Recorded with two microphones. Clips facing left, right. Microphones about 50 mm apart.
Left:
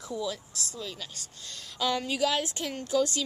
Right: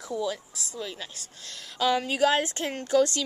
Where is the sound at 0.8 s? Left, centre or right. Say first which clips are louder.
Right 4 dB; right.